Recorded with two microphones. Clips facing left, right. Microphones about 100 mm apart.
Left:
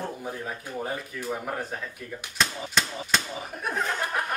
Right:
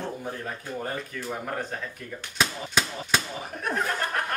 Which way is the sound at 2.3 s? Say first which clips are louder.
Right 1 dB; centre (ahead or behind).